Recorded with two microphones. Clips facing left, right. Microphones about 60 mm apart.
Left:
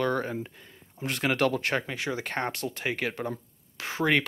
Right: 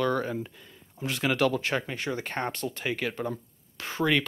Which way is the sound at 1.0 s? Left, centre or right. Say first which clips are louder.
Even; left.